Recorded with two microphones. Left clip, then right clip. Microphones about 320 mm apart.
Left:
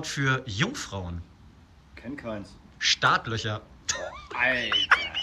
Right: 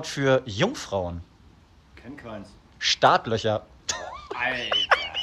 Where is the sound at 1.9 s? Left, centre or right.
Centre.